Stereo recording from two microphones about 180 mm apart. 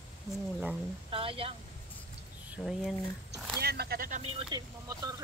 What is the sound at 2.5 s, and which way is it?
Speech, centre (ahead or behind).